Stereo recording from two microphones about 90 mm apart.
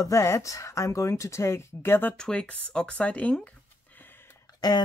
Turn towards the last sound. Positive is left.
turn(degrees=45)  # may be behind; listen again after turning